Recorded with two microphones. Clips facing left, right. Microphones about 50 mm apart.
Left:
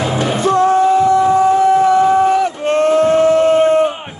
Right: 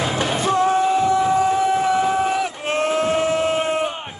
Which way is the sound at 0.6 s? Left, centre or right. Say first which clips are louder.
Left 7 dB; centre.